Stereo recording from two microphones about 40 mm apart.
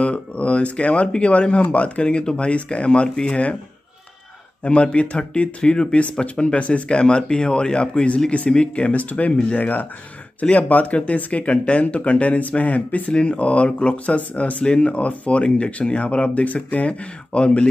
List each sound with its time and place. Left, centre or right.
0.0 s speech: left
4.6 s speech: left
9.6 s speech: left
13.1 s speech: left